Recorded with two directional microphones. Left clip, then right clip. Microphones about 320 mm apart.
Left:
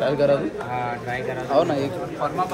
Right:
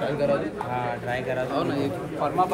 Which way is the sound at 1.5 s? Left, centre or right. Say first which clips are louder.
Left 11 dB; left.